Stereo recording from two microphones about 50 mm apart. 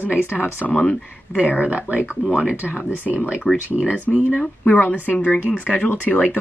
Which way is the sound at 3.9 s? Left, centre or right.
Right.